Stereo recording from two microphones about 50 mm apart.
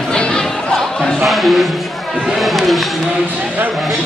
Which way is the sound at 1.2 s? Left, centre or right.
Centre.